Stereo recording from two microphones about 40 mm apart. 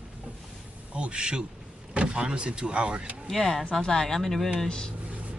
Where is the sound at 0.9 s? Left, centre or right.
Right.